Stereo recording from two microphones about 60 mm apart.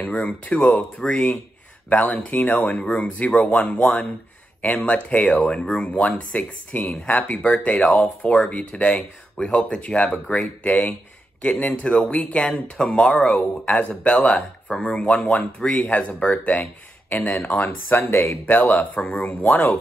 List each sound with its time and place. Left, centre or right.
0.0 s speech: left
17.8 s speech: left
18.5 s speech: left